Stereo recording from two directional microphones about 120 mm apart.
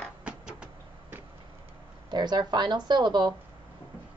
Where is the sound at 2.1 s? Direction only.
35° right (ahead or behind).